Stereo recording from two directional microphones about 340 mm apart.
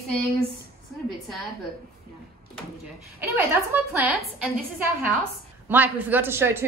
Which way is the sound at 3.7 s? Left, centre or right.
Centre.